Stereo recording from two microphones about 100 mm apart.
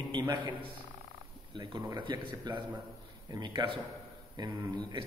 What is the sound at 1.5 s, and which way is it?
Speech, 45° right (ahead or behind).